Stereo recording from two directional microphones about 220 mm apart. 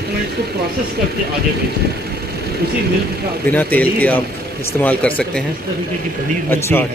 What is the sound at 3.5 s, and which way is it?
A man's voice, 5° left (ahead or behind).